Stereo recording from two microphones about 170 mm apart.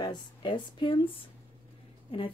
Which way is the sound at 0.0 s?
25° left (ahead or behind).